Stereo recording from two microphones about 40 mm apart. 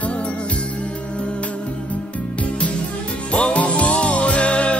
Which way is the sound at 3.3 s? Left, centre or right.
Left.